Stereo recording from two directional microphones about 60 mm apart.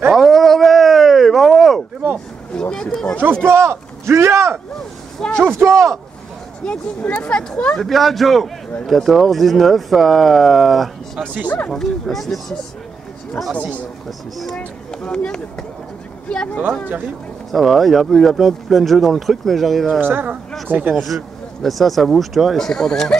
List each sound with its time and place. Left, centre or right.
0.1 s a sound: centre
2.5 s speech: centre
3.4 s speech: right
6.6 s speech: left
7.8 s speech: centre
11.4 s speech: left
11.7 s speech: centre
13.5 s speech: right
14.6 s speech: centre
17.5 s speech: centre
20.0 s speech: right
20.9 s speech: centre